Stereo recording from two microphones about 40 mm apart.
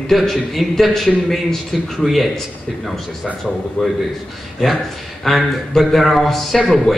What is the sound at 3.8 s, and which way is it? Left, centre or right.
Speech, left.